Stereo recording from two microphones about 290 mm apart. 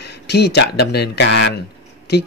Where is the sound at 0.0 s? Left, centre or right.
Left.